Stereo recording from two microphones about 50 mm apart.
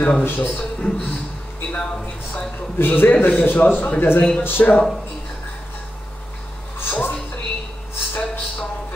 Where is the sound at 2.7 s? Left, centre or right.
Left.